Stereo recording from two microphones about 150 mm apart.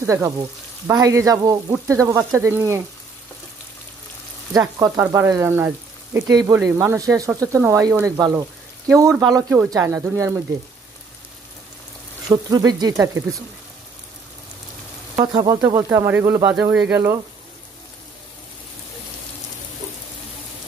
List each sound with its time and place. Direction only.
0.0 s speech: 20° right (ahead or behind)
4.6 s speech: 20° right (ahead or behind)
8.2 s a sound: 20° right (ahead or behind)
9.2 s speech: 25° right (ahead or behind)
12.3 s speech: 25° right (ahead or behind)
15.1 s speech: 25° right (ahead or behind)